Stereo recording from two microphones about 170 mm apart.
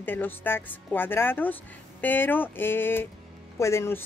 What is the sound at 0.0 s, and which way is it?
A woman's voice, 10° left (ahead or behind).